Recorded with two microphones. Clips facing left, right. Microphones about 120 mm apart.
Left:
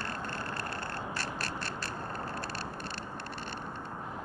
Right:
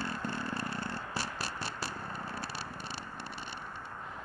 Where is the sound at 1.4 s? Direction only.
10° right (ahead or behind).